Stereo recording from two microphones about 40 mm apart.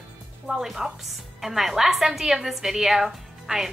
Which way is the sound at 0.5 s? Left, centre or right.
Centre.